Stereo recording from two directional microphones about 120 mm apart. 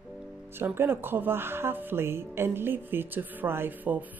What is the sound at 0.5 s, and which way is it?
Speech, 20° right (ahead or behind).